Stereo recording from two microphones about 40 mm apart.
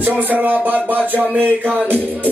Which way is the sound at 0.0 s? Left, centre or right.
Right.